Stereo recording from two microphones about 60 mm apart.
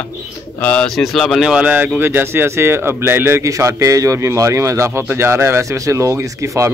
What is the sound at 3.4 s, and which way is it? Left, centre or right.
A man's voice, right.